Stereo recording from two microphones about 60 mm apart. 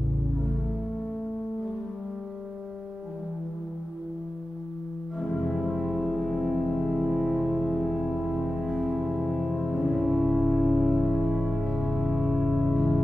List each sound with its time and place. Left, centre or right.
5.2 s music: centre